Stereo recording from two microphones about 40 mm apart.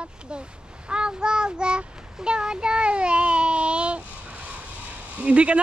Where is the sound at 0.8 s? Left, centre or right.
Right.